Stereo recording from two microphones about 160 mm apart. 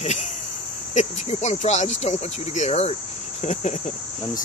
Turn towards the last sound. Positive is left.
turn(degrees=45)  # may be behind; listen again after turning